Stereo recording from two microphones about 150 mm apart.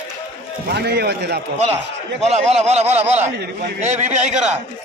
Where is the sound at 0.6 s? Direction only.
90° right.